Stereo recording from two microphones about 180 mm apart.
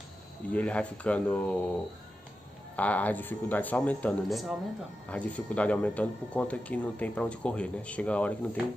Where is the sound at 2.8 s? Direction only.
10° left (ahead or behind).